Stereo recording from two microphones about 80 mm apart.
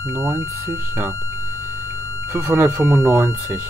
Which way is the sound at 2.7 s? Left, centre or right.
Centre.